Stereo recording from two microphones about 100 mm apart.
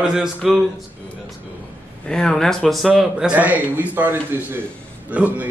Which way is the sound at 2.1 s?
5° left (ahead or behind).